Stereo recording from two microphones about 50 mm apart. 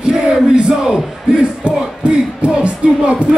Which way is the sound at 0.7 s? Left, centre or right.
Centre.